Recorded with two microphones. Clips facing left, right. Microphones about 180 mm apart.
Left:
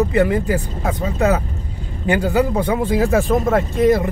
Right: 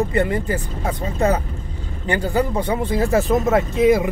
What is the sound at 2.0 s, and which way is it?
Speech, 15° left (ahead or behind).